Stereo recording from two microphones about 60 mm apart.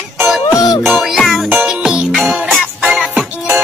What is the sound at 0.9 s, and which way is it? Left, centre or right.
Music, centre.